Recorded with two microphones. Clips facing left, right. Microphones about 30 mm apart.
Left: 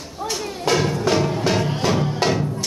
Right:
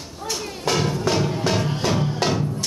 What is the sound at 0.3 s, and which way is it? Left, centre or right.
Music, centre.